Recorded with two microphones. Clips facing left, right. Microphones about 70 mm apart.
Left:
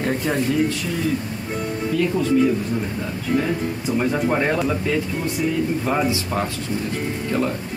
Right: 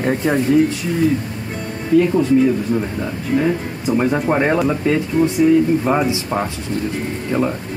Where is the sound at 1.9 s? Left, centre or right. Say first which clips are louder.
Right 9 dB; right.